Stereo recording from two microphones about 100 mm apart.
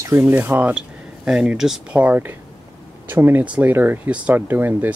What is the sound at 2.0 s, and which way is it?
Speech, 20° right (ahead or behind).